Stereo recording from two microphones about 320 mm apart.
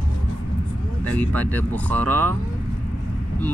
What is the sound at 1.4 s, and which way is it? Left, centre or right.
Speech, centre.